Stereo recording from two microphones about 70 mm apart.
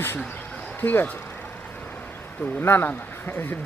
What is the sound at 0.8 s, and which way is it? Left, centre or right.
Speech, left.